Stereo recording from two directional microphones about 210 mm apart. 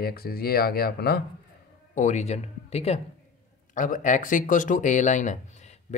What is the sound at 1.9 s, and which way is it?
Speech, 35° left (ahead or behind).